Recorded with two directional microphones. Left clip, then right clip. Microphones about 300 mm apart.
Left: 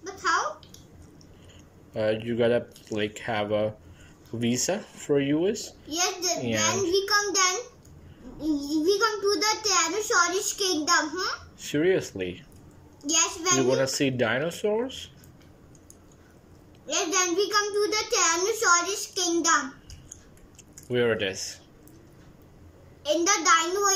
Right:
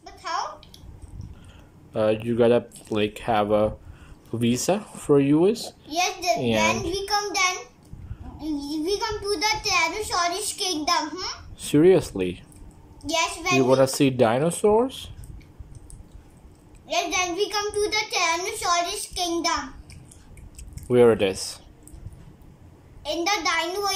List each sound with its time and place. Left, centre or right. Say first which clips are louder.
0.0 s a sound: left 5 dB; centre
2.0 s a child's voice: right 4 dB; centre
16.8 s a child's voice: right 2 dB; centre
20.7 s speech: right 8 dB; centre
23.0 s a child's voice: left 2 dB; centre